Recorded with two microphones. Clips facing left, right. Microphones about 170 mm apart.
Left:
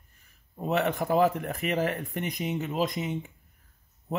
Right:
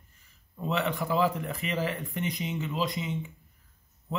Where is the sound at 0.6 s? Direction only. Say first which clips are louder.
Left 3 dB; 50° left (ahead or behind).